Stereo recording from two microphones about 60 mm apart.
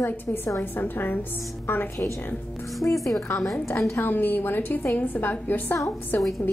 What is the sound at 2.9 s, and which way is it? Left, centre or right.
Speech, left.